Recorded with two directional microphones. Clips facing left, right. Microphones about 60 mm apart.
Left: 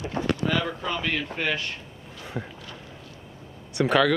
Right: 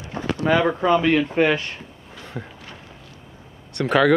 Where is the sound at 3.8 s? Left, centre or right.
Centre.